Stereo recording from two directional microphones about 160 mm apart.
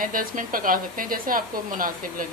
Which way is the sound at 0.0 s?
60° right (ahead or behind).